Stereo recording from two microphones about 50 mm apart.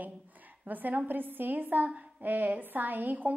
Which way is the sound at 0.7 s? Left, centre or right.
Right.